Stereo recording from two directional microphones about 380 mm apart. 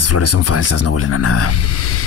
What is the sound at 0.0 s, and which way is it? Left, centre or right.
Speech, left.